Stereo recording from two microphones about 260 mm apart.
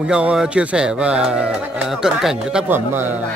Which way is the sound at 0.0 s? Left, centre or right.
Centre.